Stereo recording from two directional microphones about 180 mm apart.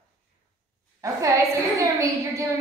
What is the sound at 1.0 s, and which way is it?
A woman's voice, 15° right (ahead or behind).